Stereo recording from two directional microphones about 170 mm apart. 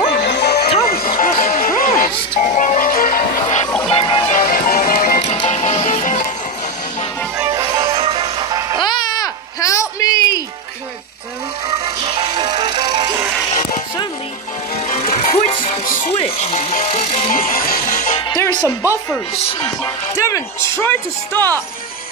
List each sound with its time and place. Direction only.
0.2 s music: 70° left (ahead or behind)
0.8 s music: 60° left (ahead or behind)
2.3 s music: 45° left (ahead or behind)
3.9 s music: 30° left (ahead or behind)
4.3 s music: 50° left (ahead or behind)
5.5 s music: 35° left (ahead or behind)
7.3 s music: 20° right (ahead or behind)
7.8 s music: 30° right (ahead or behind)
8.7 s a sound: 25° left (ahead or behind)
11.8 s music: 30° right (ahead or behind)
14.9 s music: 45° left (ahead or behind)
16.1 s music: 35° left (ahead or behind)
17.3 s music: 55° left (ahead or behind)
18.3 s music: 25° left (ahead or behind)